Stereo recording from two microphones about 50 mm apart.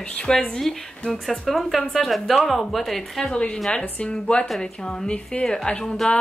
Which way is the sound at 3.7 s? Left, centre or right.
Left.